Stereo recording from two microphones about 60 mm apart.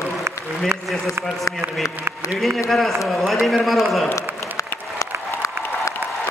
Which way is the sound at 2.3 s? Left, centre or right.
Centre.